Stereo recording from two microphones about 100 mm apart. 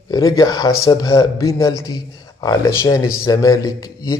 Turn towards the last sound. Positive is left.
turn(degrees=35)  # may be behind; listen again after turning